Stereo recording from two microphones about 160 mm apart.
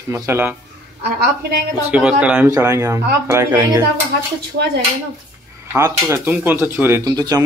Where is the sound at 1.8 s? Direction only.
10° right (ahead or behind).